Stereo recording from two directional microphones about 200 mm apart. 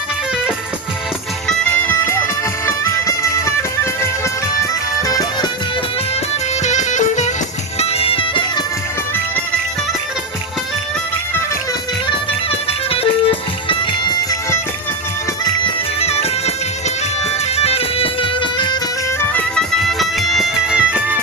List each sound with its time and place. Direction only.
1.6 s music: 10° left (ahead or behind)
6.6 s music: 35° left (ahead or behind)
12.1 s music: 30° left (ahead or behind)
15.6 s music: 30° left (ahead or behind)
17.6 s music: 30° left (ahead or behind)
19.3 s music: centre (ahead or behind)